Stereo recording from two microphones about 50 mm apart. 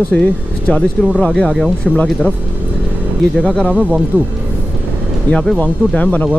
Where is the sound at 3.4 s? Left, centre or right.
Left.